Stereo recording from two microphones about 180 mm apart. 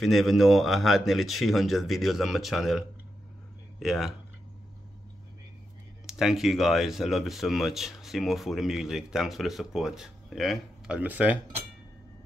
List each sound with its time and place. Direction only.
0.0 s speech: centre (ahead or behind)
3.8 s speech: centre (ahead or behind)
6.0 s speech: centre (ahead or behind)